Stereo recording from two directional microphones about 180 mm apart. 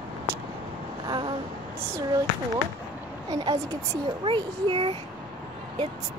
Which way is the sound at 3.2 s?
20° right (ahead or behind).